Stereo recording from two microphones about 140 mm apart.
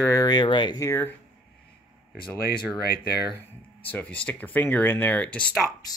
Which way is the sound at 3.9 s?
10° left (ahead or behind).